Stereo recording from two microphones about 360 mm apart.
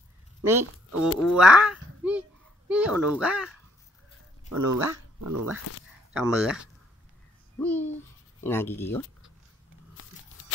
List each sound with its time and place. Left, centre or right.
0.5 s a child's voice: centre
4.5 s speech: right
6.1 s speech: centre